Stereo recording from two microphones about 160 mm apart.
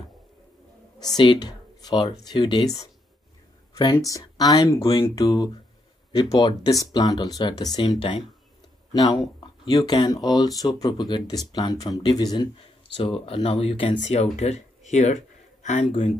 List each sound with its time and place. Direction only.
0.9 s speech: 25° left (ahead or behind)
9.4 s a sound: 25° left (ahead or behind)
10.0 s speech: 25° left (ahead or behind); by 16.1 s 40° left (ahead or behind)